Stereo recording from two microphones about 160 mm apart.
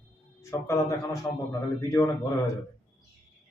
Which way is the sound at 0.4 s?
20° left (ahead or behind).